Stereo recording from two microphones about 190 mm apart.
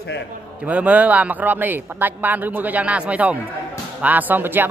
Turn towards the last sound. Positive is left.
turn(degrees=-10)  # may be behind; listen again after turning